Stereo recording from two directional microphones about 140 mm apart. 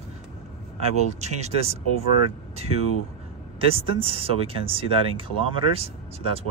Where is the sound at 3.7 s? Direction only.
40° right (ahead or behind).